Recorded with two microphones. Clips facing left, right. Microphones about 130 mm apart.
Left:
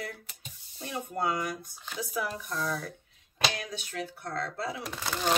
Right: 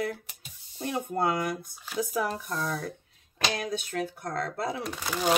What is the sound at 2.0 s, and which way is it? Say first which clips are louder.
Speech: right 5 dB; 45° right (ahead or behind).